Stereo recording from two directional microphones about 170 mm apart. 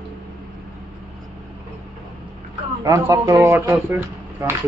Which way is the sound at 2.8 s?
20° right (ahead or behind).